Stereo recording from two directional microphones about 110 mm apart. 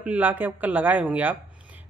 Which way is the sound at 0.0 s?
15° right (ahead or behind).